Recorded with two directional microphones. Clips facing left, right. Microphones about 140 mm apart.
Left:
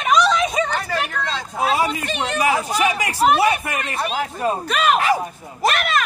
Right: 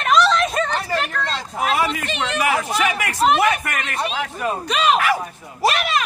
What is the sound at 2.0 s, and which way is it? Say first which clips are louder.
Speech: left 1 dB; 5° left (ahead or behind).